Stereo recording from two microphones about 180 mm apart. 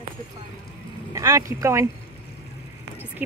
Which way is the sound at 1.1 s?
20° right (ahead or behind).